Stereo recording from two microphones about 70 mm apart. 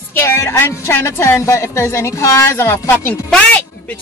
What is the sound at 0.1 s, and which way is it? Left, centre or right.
A woman's voice, left.